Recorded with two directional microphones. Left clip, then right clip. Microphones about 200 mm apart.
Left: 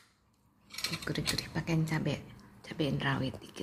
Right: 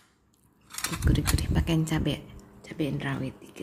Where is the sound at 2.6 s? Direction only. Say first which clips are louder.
Right 1 dB; 5° left (ahead or behind).